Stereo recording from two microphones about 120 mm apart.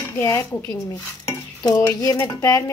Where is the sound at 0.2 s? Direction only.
20° left (ahead or behind).